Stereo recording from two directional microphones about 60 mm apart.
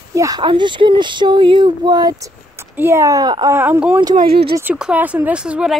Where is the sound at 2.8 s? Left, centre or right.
Right.